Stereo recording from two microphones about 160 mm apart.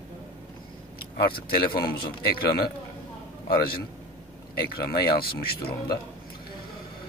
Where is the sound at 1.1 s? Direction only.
70° left (ahead or behind).